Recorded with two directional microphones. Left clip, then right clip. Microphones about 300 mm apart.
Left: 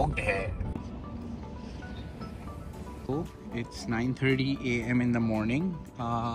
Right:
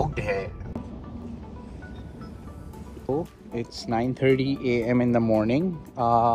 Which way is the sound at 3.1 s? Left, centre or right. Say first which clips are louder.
Right 7 dB; centre.